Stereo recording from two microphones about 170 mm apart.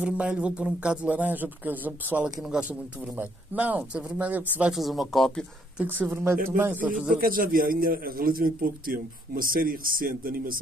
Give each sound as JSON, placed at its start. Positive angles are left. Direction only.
{"t": 0.0, "sound": "speech", "side_deg": -5}
{"t": 5.9, "sound": "speech", "side_deg": -10}
{"t": 7.2, "sound": "a man's voice", "side_deg": -55}